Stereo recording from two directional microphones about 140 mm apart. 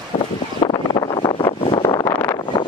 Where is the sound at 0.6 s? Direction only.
35° left (ahead or behind).